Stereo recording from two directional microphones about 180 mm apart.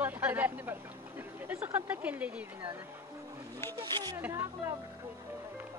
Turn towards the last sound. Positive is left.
turn(degrees=-20)  # may be behind; listen again after turning